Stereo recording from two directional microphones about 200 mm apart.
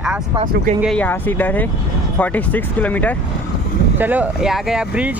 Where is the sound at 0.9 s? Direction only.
10° left (ahead or behind).